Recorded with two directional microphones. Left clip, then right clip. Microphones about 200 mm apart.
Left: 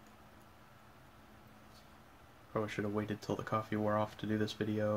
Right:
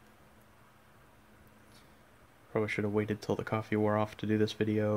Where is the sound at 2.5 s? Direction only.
55° right (ahead or behind).